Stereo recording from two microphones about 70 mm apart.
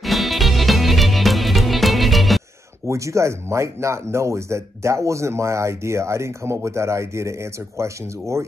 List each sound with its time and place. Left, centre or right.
0.0 s music: centre
2.9 s speech: right